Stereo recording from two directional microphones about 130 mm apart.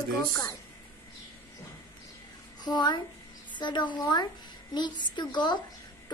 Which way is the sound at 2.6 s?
30° left (ahead or behind).